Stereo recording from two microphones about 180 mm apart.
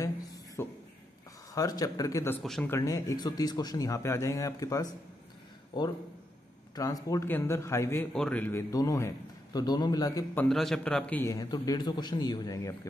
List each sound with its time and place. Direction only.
0.0 s a sound: 20° left (ahead or behind)
1.5 s a man's voice: 20° left (ahead or behind)
2.4 s speech: centre (ahead or behind)
2.7 s a man's voice: 20° left (ahead or behind)
6.7 s a man's voice: 20° left (ahead or behind)
10.5 s a man's voice: centre (ahead or behind); by 12.7 s 20° left (ahead or behind)